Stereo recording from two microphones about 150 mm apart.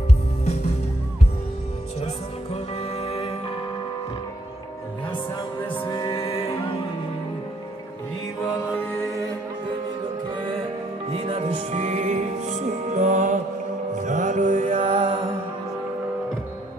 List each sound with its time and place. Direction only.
2.5 s music: 45° left (ahead or behind)
5.9 s music: 35° left (ahead or behind)
11.1 s music: 40° right (ahead or behind)
14.8 s music: 35° right (ahead or behind)